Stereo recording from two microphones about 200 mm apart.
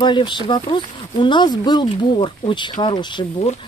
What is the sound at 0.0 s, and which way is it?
Speech, 20° left (ahead or behind).